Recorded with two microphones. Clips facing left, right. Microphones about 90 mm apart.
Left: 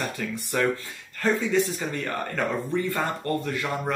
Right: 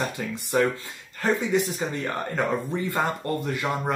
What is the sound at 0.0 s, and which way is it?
Speech, 20° right (ahead or behind).